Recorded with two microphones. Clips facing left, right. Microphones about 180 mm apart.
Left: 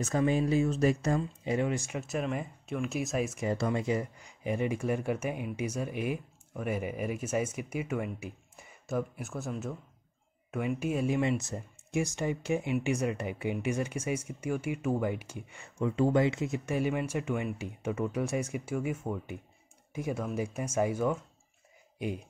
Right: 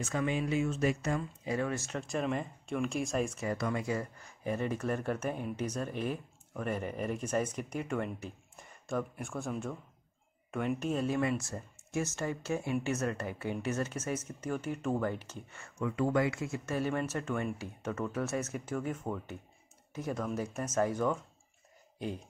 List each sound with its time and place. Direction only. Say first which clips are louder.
0.0 s speech: left 5 dB; 35° left (ahead or behind)
1.4 s speech: left 3 dB; 20° left (ahead or behind); by 3.3 s 5° left (ahead or behind)
3.3 s speech: left 3 dB; 25° left (ahead or behind)
15.8 s speech: left 4 dB; 25° left (ahead or behind); by 21.2 s 10° left (ahead or behind)
21.9 s a sound: left 3 dB; 15° left (ahead or behind)